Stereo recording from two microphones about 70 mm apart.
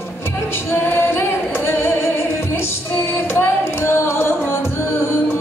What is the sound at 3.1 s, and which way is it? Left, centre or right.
Music, left.